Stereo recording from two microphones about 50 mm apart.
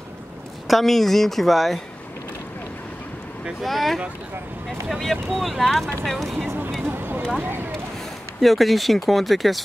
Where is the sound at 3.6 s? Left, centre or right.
Centre.